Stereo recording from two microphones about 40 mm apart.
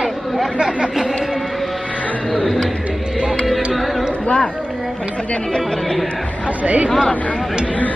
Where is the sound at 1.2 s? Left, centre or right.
Centre.